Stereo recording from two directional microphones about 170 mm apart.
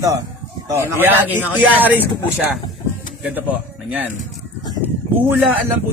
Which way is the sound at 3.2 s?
10° right (ahead or behind).